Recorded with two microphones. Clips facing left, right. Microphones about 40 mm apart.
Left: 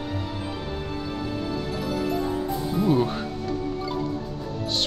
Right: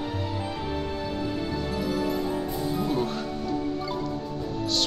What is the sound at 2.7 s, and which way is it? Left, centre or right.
Speech, centre.